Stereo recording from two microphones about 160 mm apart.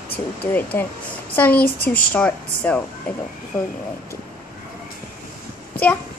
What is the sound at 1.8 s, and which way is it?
Speech, 65° left (ahead or behind).